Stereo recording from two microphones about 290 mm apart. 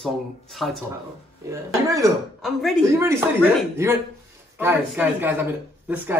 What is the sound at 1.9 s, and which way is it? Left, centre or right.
Speech, centre.